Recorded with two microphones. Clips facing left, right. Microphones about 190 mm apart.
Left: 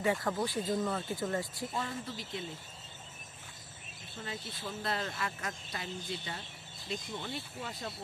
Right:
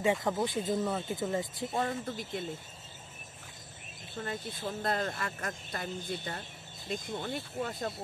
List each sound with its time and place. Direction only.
0.0 s speech: 20° right (ahead or behind)
1.8 s speech: 55° right (ahead or behind)
4.2 s speech: 50° right (ahead or behind)